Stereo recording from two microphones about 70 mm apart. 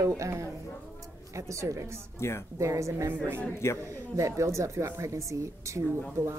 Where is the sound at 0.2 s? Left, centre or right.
Right.